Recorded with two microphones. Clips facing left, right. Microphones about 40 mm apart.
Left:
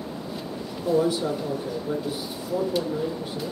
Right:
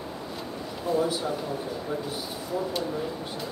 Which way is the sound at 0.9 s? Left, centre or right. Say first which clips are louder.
Left 4 dB; centre.